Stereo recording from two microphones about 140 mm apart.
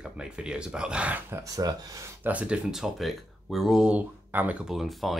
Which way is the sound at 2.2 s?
10° right (ahead or behind).